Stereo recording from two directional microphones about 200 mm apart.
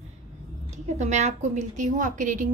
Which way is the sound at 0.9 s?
35° right (ahead or behind).